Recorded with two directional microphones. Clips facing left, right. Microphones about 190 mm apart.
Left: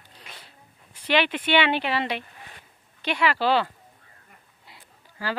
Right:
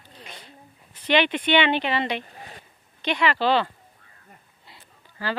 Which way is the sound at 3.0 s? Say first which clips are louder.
Right 1 dB; 5° left (ahead or behind).